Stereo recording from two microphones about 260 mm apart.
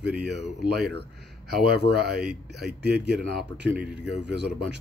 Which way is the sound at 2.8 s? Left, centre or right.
Right.